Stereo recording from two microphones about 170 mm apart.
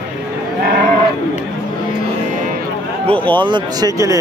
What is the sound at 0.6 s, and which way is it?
Livestock, 55° right (ahead or behind).